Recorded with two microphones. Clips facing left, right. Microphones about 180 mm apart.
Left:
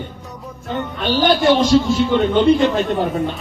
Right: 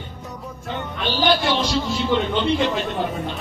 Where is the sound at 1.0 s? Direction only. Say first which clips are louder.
Left 6 dB; 45° left (ahead or behind).